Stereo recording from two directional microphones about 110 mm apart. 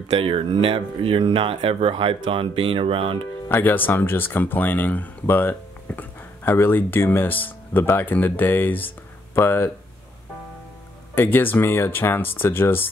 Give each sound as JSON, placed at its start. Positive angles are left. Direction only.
{"t": 0.2, "sound": "speech", "side_deg": -55}
{"t": 3.4, "sound": "speech", "side_deg": 15}
{"t": 11.1, "sound": "speech", "side_deg": 20}